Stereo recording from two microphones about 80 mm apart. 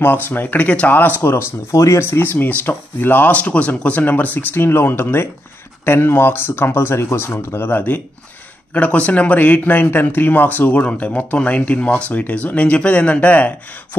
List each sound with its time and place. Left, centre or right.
0.0 s speech: left
1.7 s speech: left; by 13.5 s centre